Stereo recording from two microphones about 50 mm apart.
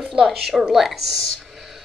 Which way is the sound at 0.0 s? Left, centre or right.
Centre.